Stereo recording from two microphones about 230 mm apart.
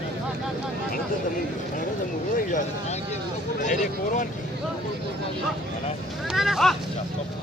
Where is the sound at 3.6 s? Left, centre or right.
Left.